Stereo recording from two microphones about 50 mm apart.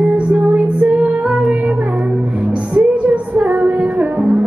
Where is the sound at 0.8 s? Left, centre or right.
Right.